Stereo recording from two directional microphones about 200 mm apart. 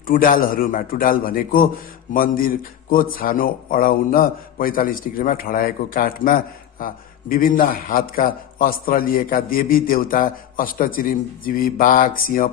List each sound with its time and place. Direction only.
0.0 s a man's voice: 45° left (ahead or behind)